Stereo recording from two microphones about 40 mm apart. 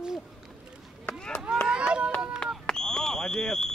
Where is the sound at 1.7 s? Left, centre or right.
Right.